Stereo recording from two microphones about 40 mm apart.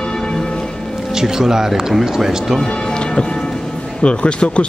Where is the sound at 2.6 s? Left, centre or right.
Centre.